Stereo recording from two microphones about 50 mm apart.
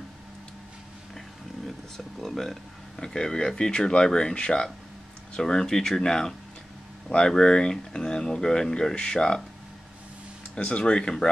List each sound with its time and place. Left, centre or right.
2.0 s speech: centre
10.5 s speech: centre